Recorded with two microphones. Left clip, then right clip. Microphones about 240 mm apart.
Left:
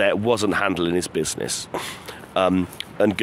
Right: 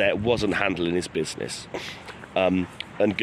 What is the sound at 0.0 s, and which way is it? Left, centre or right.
Speech, centre.